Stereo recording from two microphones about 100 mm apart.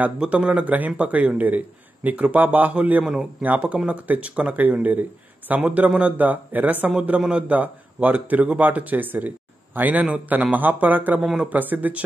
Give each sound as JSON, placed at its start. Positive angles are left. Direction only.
{"t": 0.0, "sound": "a man's voice", "side_deg": -10}